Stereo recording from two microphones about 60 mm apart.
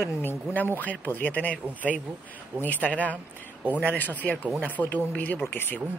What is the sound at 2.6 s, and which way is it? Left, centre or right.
Speech, left.